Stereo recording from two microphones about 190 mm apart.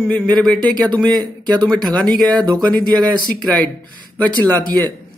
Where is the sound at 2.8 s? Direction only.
5° left (ahead or behind).